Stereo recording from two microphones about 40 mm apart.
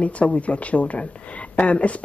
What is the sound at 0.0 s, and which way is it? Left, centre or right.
A woman's voice, left.